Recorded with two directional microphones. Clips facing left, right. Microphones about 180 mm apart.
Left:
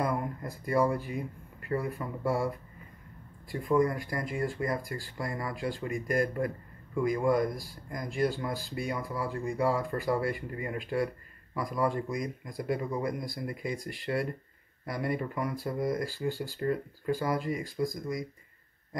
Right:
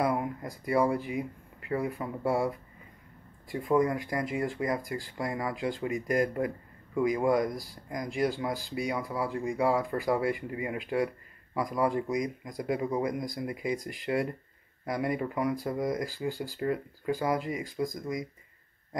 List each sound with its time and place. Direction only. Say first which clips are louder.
0.0 s speech: right 2 dB; 10° right (ahead or behind)
3.6 s speech: even; 20° right (ahead or behind)
15.0 s speech: right 2 dB; 15° right (ahead or behind)